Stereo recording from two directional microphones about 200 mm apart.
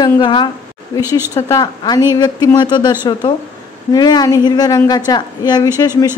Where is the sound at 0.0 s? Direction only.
25° left (ahead or behind).